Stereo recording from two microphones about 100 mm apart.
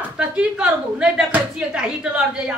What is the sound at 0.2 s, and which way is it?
A woman's voice, 10° right (ahead or behind).